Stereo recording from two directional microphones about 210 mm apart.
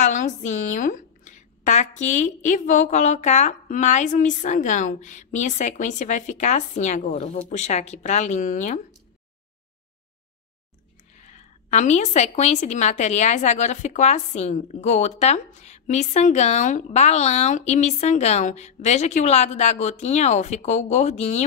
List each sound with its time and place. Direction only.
0.0 s a woman's voice: 35° left (ahead or behind)
11.1 s a woman's voice: 35° left (ahead or behind)